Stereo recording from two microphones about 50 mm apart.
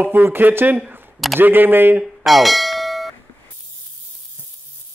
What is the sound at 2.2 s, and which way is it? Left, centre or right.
Bell, centre.